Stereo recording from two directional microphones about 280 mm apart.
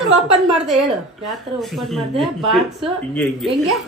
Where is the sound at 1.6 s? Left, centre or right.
Centre.